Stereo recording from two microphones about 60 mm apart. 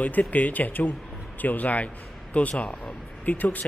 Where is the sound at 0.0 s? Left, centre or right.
Left.